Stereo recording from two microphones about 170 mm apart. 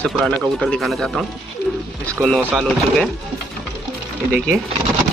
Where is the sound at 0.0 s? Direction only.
5° left (ahead or behind).